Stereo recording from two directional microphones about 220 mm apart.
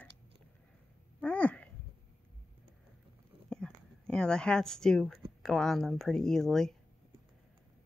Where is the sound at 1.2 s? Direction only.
5° left (ahead or behind).